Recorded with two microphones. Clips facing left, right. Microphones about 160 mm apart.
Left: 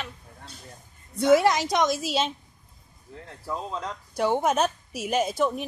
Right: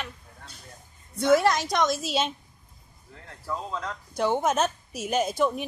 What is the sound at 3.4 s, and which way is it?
Speech, 15° left (ahead or behind).